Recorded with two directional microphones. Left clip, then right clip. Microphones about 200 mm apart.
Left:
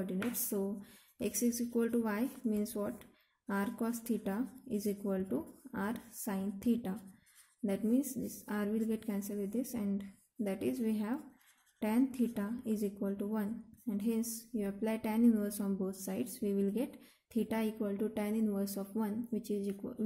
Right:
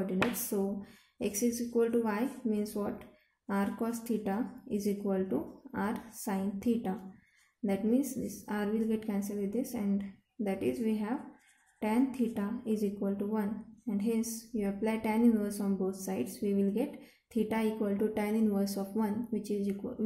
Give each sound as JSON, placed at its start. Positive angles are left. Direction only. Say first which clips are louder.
{"t": 0.0, "sound": "a sound", "louder": "right 7 dB", "side_deg": 30}
{"t": 1.2, "sound": "a woman's voice", "louder": "right 3 dB", "side_deg": 30}
{"t": 12.4, "sound": "a woman's voice", "louder": "right 4 dB", "side_deg": 30}